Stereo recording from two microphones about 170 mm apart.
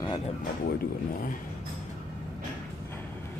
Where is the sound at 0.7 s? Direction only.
60° left (ahead or behind).